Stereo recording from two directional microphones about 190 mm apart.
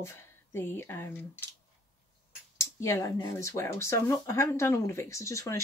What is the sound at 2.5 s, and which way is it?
Speech, 15° left (ahead or behind).